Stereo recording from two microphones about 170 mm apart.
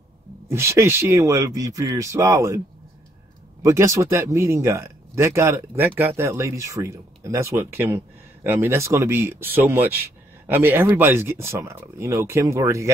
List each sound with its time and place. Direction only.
0.5 s speech: 15° right (ahead or behind)
3.6 s speech: 15° right (ahead or behind)